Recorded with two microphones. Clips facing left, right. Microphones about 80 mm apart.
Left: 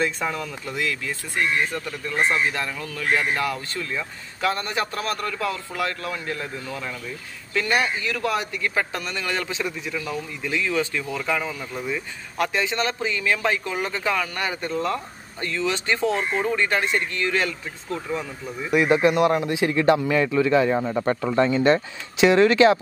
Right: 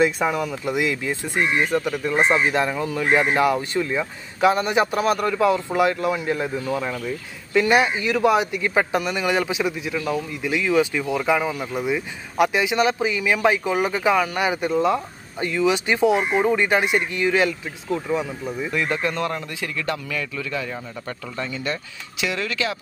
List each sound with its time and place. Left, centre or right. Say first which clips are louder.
0.0 s a man's voice: right 5 dB; centre
18.7 s a man's voice: left 8 dB; centre